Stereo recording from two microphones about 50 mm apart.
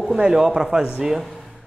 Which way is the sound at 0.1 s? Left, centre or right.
Centre.